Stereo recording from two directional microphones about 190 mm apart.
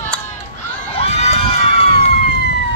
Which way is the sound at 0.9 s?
35° left (ahead or behind).